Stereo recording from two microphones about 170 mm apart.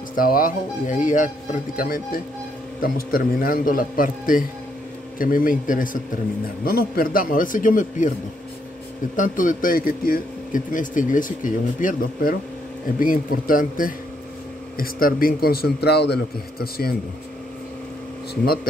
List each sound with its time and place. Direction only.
0.1 s a man's voice: 55° left (ahead or behind)
9.1 s a man's voice: 50° left (ahead or behind)
18.3 s a man's voice: 65° left (ahead or behind)